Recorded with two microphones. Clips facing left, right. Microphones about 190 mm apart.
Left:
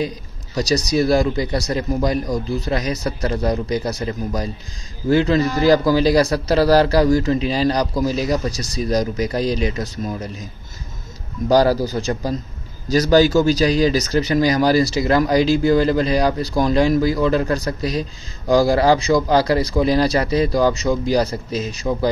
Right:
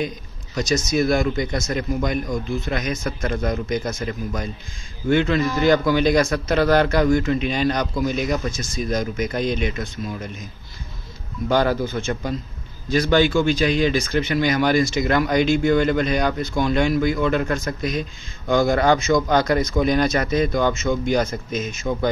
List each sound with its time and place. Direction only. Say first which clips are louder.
0.6 s speech: left 2 dB; 35° left (ahead or behind)